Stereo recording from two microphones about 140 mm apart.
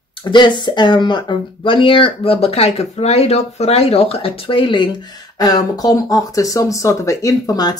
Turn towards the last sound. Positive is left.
turn(degrees=25)  # may be behind; listen again after turning